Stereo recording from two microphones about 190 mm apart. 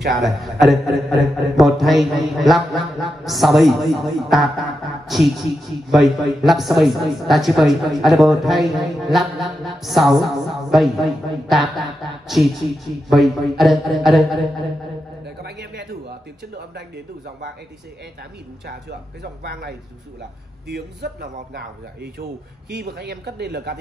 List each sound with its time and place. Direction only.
0.1 s a man's voice: centre (ahead or behind)
15.2 s a sound: 60° right (ahead or behind)
16.5 s a man's voice: 60° right (ahead or behind)
18.7 s a man's voice: 60° right (ahead or behind)
20.7 s a man's voice: 55° right (ahead or behind)